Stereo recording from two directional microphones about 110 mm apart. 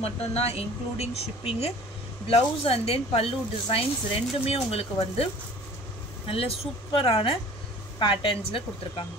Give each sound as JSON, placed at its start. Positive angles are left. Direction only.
{"t": 0.0, "sound": "speech", "side_deg": 70}